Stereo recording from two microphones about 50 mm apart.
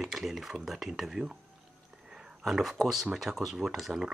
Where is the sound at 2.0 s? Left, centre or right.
Centre.